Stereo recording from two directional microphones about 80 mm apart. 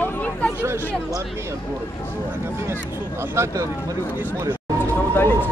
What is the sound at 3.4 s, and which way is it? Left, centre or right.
Speech, right.